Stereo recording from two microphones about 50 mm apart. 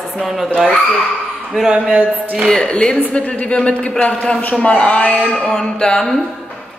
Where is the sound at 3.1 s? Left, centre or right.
Left.